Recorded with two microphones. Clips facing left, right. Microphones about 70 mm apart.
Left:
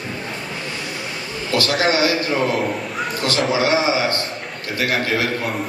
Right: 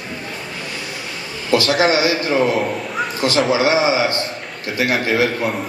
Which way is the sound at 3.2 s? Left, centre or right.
Right.